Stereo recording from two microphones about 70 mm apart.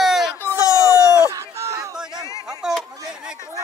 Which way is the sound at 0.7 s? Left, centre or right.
Left.